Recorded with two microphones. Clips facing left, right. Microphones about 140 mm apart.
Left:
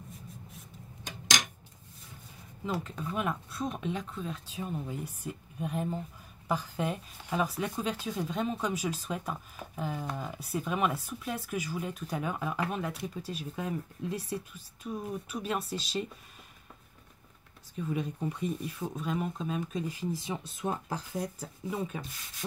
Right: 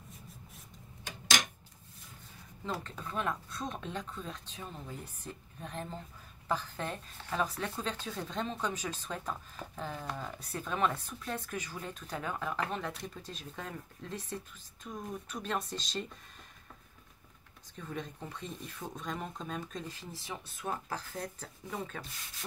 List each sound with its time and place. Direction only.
1.0 s a sound: 15° left (ahead or behind)
2.6 s speech: 5° left (ahead or behind)
17.7 s speech: 10° left (ahead or behind)